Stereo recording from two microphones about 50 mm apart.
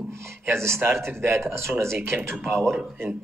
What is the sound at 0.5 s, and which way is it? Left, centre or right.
Speech, right.